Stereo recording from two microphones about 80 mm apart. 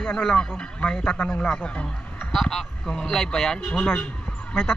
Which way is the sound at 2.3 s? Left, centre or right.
Centre.